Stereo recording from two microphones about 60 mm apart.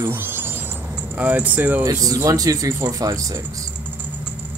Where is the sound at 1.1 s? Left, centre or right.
Right.